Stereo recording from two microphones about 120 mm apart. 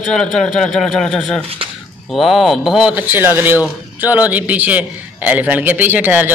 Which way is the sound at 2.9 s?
15° right (ahead or behind).